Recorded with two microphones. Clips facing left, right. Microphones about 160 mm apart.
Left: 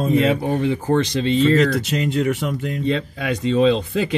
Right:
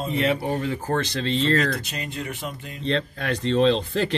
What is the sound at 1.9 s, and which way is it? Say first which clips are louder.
Speech: left 12 dB; 80° left.